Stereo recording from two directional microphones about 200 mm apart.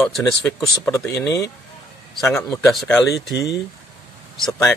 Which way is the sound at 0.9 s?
15° left (ahead or behind).